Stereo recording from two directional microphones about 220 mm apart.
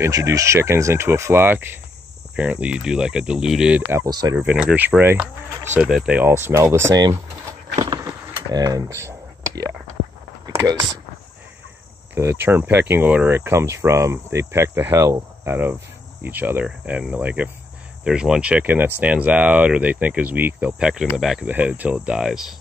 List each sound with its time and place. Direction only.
0.0 s speech: 15° right (ahead or behind)
4.4 s speech: 5° right (ahead or behind)
7.8 s a sound: 20° right (ahead or behind)
8.3 s speech: 15° right (ahead or behind)
10.4 s a sound: 15° right (ahead or behind)
12.2 s speech: 10° right (ahead or behind)